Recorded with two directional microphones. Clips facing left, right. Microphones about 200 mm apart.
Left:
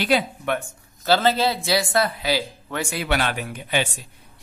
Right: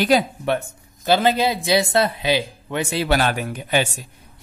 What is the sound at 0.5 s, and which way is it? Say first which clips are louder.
Speech: right 3 dB; 20° right (ahead or behind).